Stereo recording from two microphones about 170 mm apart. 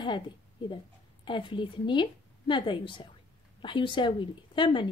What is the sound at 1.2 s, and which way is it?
A woman's voice, 30° left (ahead or behind).